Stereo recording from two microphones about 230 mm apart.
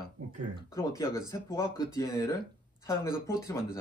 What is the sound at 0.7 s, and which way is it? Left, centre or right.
A man's voice, centre.